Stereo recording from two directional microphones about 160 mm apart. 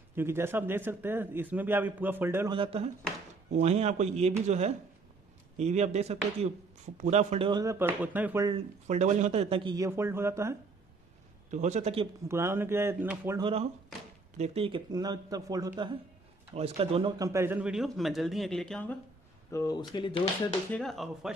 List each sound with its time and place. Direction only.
0.1 s a man's voice: 15° right (ahead or behind)
2.5 s speech: 35° right (ahead or behind)
7.6 s a man's voice: 15° right (ahead or behind)
8.8 s speech: 45° right (ahead or behind); by 10.5 s 15° right (ahead or behind)
11.5 s speech: 50° right (ahead or behind)
12.3 s a man's voice: 15° right (ahead or behind)
13.4 s speech: 35° right (ahead or behind)
16.5 s speech: 40° right (ahead or behind)
17.2 s speech: 15° right (ahead or behind); by 18.9 s 5° left (ahead or behind)
19.5 s speech: 20° left (ahead or behind)
20.7 s speech: centre (ahead or behind)